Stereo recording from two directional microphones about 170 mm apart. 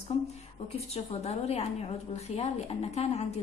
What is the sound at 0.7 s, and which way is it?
A woman's voice, 40° left (ahead or behind).